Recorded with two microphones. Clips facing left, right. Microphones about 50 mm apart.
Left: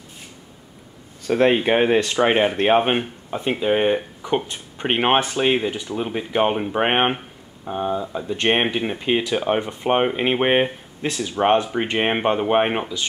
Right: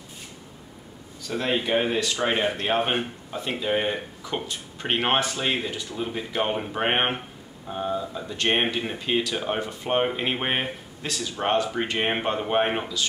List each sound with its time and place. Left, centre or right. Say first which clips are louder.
1.2 s speech: left 9 dB; left